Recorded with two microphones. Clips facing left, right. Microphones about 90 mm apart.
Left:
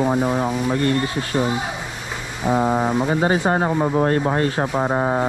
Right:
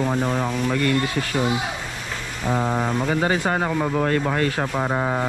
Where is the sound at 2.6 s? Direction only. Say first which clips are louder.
Left 3 dB; 30° left (ahead or behind).